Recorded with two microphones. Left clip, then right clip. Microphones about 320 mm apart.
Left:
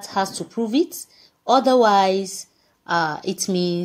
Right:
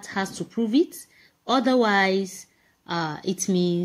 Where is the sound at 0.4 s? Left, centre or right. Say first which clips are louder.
Left 1 dB; left.